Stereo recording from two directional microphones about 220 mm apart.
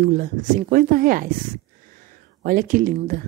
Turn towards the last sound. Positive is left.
turn(degrees=-40)  # may be behind; listen again after turning